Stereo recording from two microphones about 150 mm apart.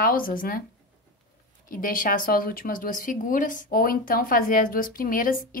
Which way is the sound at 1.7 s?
65° left (ahead or behind).